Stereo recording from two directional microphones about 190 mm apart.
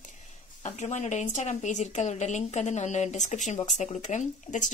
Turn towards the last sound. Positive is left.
turn(degrees=40)  # may be behind; listen again after turning